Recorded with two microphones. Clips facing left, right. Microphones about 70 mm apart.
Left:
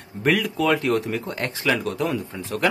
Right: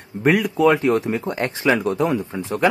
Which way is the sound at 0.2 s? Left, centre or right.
Right.